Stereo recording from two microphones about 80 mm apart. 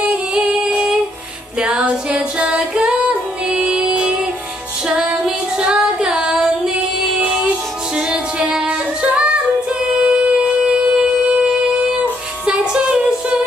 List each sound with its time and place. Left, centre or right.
0.0 s singing: centre
1.6 s music: centre
4.8 s female singing: centre
7.2 s music: centre
9.9 s shofar: centre